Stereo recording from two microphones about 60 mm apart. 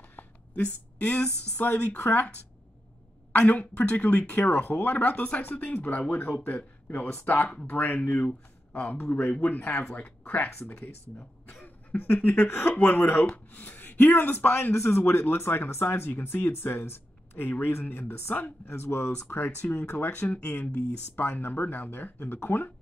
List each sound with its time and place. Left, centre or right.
0.9 s speech: left
3.3 s speech: left
11.6 s chuckle: left
12.4 s speech: left
12.6 s speech: left
13.3 s speech: left
20.2 s speech: left